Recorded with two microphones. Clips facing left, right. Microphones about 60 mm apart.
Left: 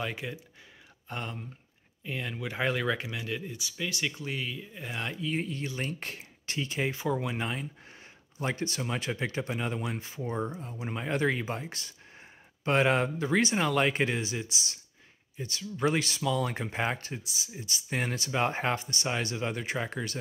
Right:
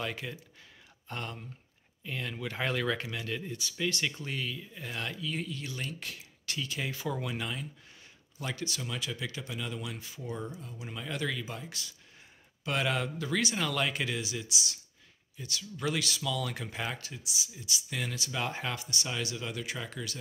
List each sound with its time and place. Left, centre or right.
0.0 s speech: centre; by 20.2 s left